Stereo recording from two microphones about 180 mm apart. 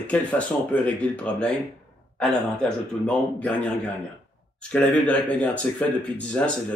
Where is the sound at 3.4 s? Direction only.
10° left (ahead or behind).